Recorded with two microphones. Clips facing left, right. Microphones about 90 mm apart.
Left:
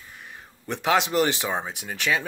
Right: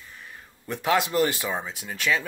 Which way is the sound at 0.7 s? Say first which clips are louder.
Left 1 dB; 25° left (ahead or behind).